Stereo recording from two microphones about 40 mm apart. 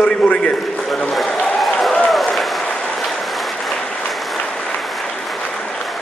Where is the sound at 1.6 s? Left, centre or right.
Centre.